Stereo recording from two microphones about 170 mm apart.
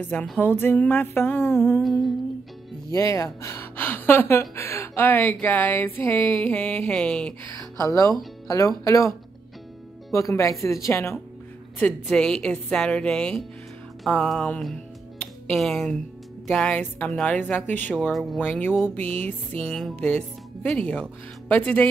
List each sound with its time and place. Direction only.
0.0 s speech: 5° left (ahead or behind)
1.8 s a woman's voice: centre (ahead or behind)
2.9 s speech: 20° left (ahead or behind)
7.7 s speech: 20° left (ahead or behind)
10.1 s speech: 20° left (ahead or behind)
11.8 s a woman's voice: 5° left (ahead or behind)